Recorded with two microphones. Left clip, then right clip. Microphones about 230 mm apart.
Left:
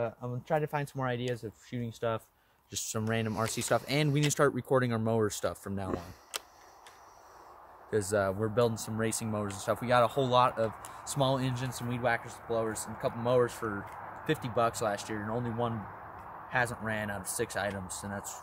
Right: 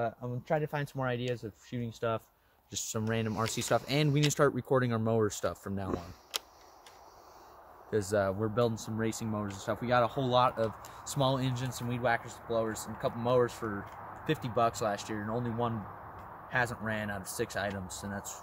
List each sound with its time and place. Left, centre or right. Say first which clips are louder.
0.0 s speech: even; centre
3.3 s speech: even; centre
7.9 s speech: left 1 dB; centre
11.1 s speech: left 1 dB; centre